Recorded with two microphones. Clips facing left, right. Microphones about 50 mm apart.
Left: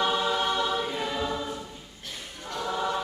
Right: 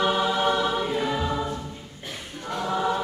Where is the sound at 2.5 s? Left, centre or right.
Centre.